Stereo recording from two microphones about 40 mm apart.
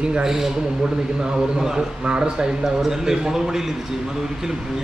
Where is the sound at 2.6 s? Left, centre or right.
Centre.